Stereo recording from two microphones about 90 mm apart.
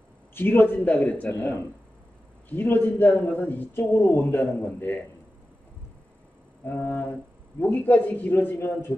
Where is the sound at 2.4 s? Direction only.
20° left (ahead or behind).